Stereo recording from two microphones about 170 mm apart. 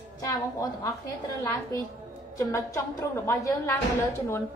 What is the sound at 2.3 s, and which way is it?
A woman's voice, 20° left (ahead or behind).